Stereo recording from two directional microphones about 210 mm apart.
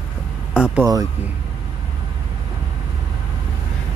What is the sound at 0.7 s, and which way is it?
Speech, 15° right (ahead or behind).